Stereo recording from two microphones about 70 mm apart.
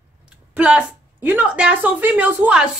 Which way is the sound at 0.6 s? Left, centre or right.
Centre.